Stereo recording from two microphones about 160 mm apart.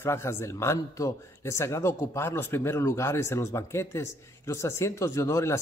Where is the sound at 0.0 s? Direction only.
15° left (ahead or behind).